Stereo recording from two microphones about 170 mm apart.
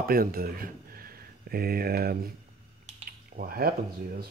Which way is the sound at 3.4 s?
60° right (ahead or behind).